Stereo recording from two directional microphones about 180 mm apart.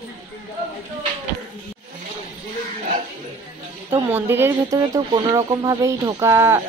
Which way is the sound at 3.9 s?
10° right (ahead or behind).